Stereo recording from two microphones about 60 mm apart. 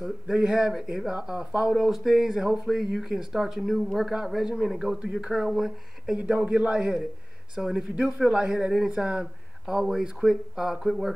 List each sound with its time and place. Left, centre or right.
0.0 s a man's voice: centre
6.1 s a man's voice: right; by 11.1 s centre